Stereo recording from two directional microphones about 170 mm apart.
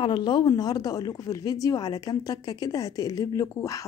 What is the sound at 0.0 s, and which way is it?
A woman's voice, 25° left (ahead or behind).